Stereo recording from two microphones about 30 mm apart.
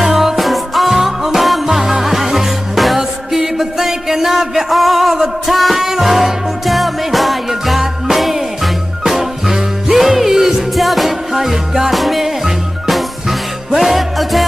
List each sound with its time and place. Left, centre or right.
0.0 s music: centre